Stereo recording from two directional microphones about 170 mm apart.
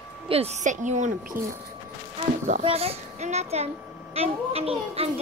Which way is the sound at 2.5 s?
35° right (ahead or behind).